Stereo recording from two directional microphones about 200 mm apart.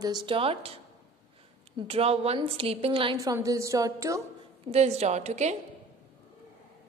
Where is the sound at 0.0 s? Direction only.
20° right (ahead or behind).